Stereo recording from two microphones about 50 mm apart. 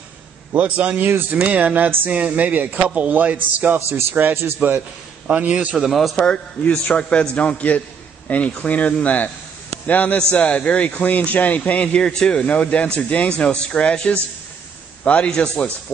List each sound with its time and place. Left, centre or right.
0.6 s a man's voice: right
5.2 s a man's voice: right
5.9 s a man's voice: centre
6.1 s a man's voice: centre
12.4 s speech: left